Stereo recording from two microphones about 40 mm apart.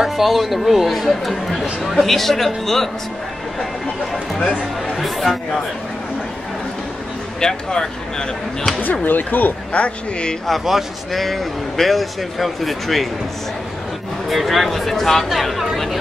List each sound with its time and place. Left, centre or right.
0.2 s speech: centre
4.5 s speech: left
4.9 s speech: centre
7.3 s speech: centre
9.0 s speech: left
9.7 s a man's voice: left
10.6 s speech: centre
14.3 s speech: centre